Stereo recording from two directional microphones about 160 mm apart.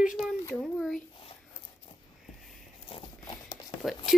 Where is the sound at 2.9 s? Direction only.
25° left (ahead or behind).